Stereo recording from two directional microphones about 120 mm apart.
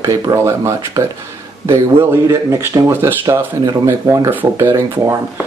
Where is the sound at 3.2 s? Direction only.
30° right (ahead or behind).